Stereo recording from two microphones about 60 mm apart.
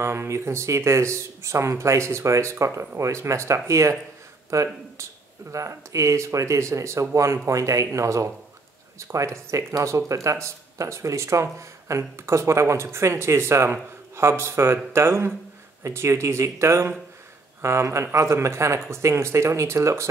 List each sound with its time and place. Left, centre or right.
0.0 s speech: right